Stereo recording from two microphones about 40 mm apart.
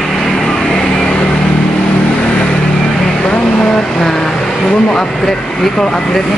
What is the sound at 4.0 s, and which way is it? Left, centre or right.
Vehicle, centre.